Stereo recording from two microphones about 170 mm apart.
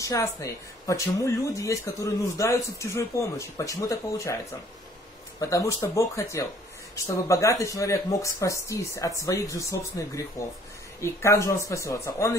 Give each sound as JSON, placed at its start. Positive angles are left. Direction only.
{"t": 0.0, "sound": "speech", "side_deg": 20}